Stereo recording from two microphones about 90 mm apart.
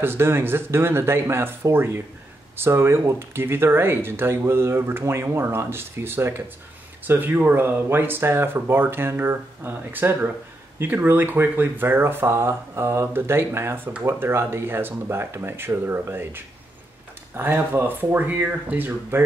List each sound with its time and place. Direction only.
0.0 s speech: 25° right (ahead or behind)